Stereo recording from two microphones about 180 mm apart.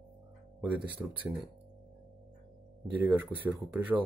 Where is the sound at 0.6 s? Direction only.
5° right (ahead or behind).